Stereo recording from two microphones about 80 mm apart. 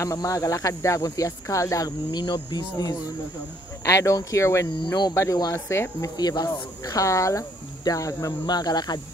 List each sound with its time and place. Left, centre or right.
0.0 s speech: left
2.0 s speech: left
3.8 s speech: left
6.1 s speech: left
8.5 s speech: left